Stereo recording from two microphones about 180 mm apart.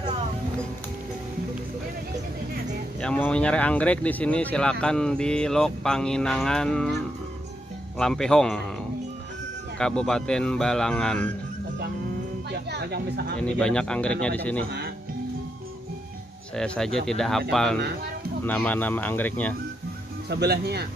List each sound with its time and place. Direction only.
3.0 s speech: 5° left (ahead or behind)
8.0 s speech: 5° left (ahead or behind)
9.8 s speech: 5° left (ahead or behind)
12.4 s music: 65° right (ahead or behind)
13.4 s speech: 5° left (ahead or behind)
16.5 s speech: 5° left (ahead or behind)
20.2 s speech: 65° right (ahead or behind)